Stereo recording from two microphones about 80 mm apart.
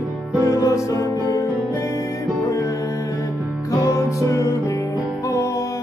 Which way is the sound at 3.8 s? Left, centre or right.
Left.